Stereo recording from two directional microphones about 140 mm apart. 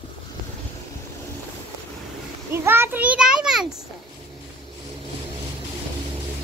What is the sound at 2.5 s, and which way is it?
A child's voice, 15° right (ahead or behind).